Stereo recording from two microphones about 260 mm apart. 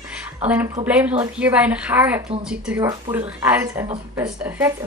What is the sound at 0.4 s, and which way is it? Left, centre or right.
A woman's voice, centre.